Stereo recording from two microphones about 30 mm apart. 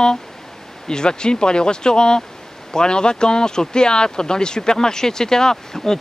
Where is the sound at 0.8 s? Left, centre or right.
Left.